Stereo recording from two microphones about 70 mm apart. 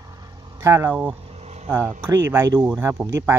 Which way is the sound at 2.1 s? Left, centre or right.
Right.